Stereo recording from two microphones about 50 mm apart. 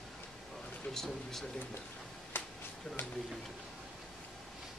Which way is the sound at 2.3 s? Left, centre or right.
Left.